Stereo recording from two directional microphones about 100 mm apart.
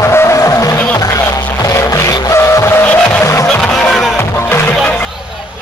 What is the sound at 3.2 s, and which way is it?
Music, 30° left (ahead or behind).